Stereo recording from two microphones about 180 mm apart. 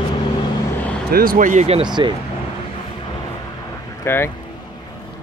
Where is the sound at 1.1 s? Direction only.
55° right (ahead or behind).